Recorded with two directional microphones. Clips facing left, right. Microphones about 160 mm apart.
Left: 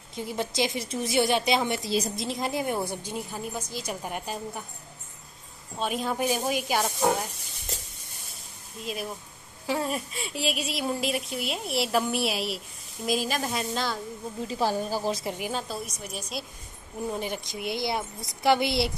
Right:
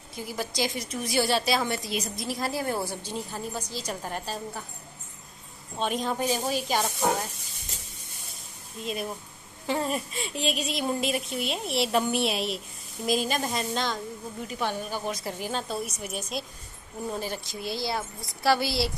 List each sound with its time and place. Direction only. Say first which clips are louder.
0.1 s a woman's voice: left 2 dB; 25° left (ahead or behind)
5.8 s a woman's voice: even; 5° left (ahead or behind)
8.8 s speech: right 2 dB; centre (ahead or behind)
14.5 s speech: left 4 dB; 35° left (ahead or behind)
15.3 s a woman's voice: right 1 dB; 10° left (ahead or behind)
16.0 s speech: right 2 dB; 5° right (ahead or behind)
17.1 s a woman's voice: even; 15° left (ahead or behind)